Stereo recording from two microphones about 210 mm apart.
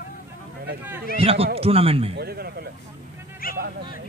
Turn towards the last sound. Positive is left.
turn(degrees=45)  # may be behind; listen again after turning